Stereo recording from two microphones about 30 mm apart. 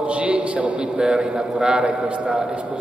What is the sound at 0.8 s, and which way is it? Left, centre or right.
Speech, right.